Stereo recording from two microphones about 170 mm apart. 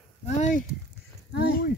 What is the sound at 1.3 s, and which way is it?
Speech, 65° left (ahead or behind).